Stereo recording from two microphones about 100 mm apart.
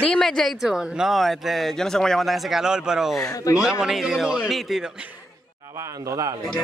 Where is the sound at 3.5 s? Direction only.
35° left (ahead or behind).